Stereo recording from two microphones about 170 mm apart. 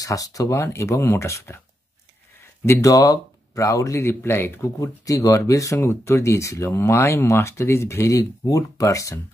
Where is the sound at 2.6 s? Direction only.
15° left (ahead or behind).